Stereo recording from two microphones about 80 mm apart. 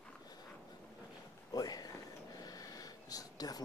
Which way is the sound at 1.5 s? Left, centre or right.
Left.